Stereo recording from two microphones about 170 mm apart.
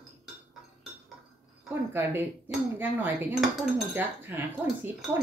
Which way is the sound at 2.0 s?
15° right (ahead or behind).